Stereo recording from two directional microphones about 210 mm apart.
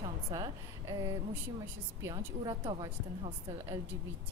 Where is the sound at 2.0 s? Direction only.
20° right (ahead or behind).